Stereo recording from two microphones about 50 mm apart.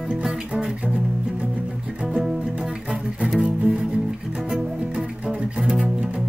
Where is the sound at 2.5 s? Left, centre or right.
Right.